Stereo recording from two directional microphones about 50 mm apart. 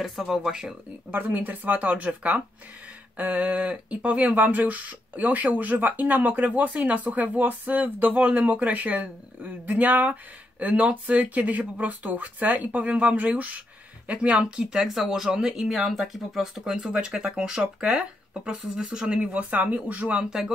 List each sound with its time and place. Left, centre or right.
0.0 s speech: centre
1.1 s speech: right; by 14.9 s centre
14.9 s speech: centre
16.7 s speech: centre
19.6 s speech: right